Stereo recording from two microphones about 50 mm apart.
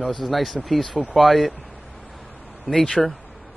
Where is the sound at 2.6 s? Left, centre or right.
Centre.